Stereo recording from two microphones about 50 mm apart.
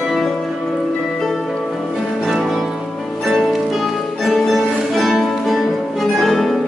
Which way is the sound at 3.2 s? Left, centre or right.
Centre.